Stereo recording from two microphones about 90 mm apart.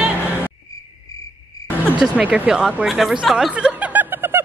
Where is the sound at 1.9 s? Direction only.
15° right (ahead or behind).